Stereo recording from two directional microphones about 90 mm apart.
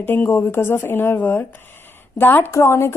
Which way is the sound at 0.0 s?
25° left (ahead or behind).